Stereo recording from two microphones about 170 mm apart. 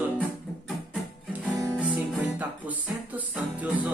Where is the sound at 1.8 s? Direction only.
10° right (ahead or behind).